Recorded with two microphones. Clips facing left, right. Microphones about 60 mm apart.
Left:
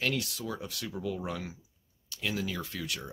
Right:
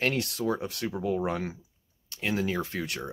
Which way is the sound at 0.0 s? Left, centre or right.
Right.